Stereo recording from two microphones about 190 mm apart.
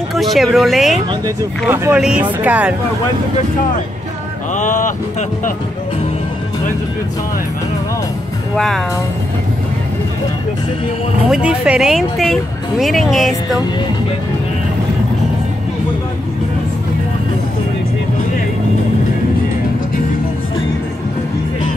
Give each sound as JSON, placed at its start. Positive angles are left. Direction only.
{"t": 0.1, "sound": "speech", "side_deg": 0}
{"t": 4.6, "sound": "speech", "side_deg": 40}
{"t": 8.5, "sound": "speech", "side_deg": 0}
{"t": 11.2, "sound": "speech", "side_deg": -5}